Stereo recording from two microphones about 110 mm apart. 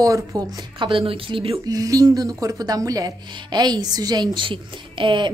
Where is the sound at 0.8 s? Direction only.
55° right (ahead or behind).